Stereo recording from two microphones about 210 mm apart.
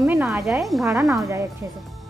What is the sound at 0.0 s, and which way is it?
Music, 5° right (ahead or behind).